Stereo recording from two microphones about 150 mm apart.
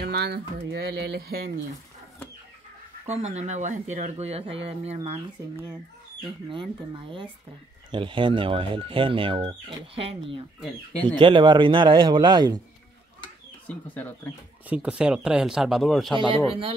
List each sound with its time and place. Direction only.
0.0 s speech: 90° right
3.1 s speech: 50° right (ahead or behind)
6.5 s speech: 35° right (ahead or behind)
13.7 s speech: 10° left (ahead or behind)
14.7 s speech: 10° right (ahead or behind)
16.2 s speech: 35° right (ahead or behind)